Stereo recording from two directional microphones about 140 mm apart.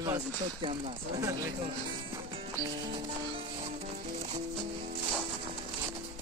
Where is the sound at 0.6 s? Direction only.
45° right (ahead or behind).